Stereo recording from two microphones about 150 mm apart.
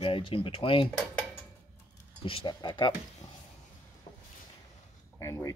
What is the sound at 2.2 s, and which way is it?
Speech, 35° left (ahead or behind).